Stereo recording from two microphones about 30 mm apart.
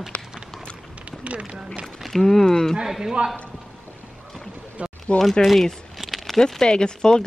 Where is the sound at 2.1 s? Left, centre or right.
Centre.